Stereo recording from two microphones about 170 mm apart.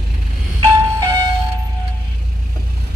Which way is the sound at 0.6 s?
25° right (ahead or behind).